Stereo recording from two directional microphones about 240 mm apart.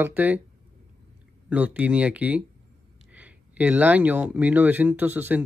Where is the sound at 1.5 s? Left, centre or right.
Centre.